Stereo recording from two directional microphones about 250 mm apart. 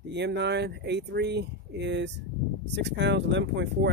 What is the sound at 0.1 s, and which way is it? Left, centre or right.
Speech, right.